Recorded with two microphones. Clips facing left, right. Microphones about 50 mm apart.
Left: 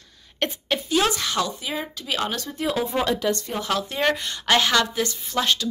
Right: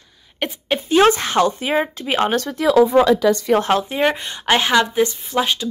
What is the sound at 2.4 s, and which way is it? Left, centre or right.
Speech, right.